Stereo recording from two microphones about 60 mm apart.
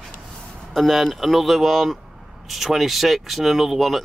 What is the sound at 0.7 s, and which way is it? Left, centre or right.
Speech, centre.